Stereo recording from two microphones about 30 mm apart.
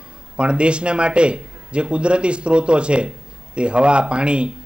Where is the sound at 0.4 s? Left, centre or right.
Right.